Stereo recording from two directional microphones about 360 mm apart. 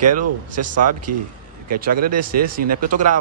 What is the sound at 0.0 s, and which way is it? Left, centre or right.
Speech, right.